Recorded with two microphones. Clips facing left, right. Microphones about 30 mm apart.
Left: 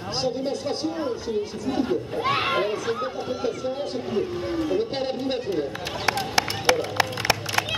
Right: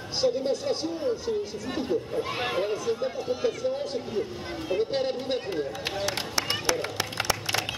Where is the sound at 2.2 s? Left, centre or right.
Left.